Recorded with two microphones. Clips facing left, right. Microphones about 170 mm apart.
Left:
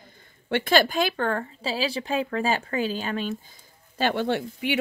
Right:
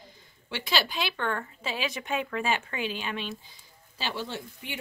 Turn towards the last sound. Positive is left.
turn(degrees=70)  # may be behind; listen again after turning